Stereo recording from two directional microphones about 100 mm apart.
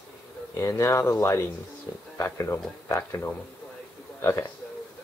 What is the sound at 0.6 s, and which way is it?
A man's voice, 30° left (ahead or behind).